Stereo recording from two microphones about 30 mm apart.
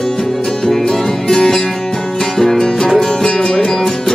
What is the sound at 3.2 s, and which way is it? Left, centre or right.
Music, left.